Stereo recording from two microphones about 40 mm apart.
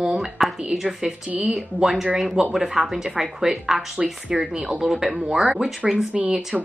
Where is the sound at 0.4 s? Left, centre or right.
Centre.